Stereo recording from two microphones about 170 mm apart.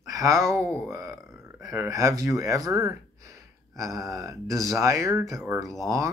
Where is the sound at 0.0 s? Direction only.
20° right (ahead or behind).